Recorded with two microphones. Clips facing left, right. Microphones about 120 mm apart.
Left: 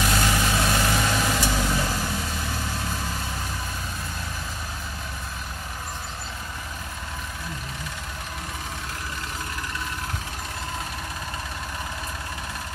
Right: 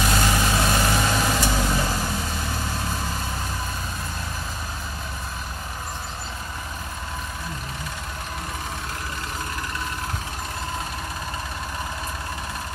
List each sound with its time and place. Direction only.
0.0 s vehicle: 30° right (ahead or behind)